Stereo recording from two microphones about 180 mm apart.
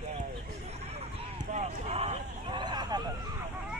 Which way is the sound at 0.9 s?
35° right (ahead or behind).